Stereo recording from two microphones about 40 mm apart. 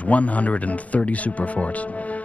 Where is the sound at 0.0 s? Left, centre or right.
Left.